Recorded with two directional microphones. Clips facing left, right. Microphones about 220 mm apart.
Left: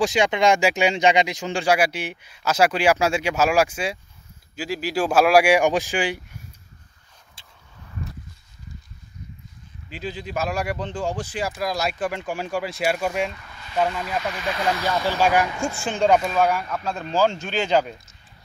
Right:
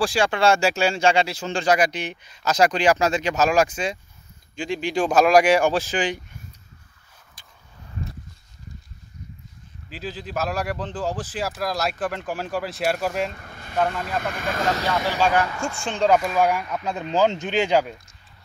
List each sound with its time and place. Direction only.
0.0 s speech: 15° left (ahead or behind)
7.4 s a sound: 25° left (ahead or behind)
9.8 s speech: centre (ahead or behind)
13.3 s a sound: 50° right (ahead or behind)
13.7 s speech: 5° left (ahead or behind)
14.0 s speech: 55° right (ahead or behind)
15.1 s speech: 15° left (ahead or behind)
16.3 s speech: 15° right (ahead or behind)